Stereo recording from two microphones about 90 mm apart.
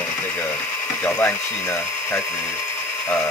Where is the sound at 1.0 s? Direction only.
30° left (ahead or behind).